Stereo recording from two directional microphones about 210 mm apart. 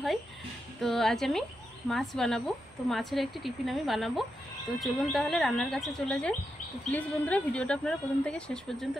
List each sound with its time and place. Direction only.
0.7 s speech: centre (ahead or behind)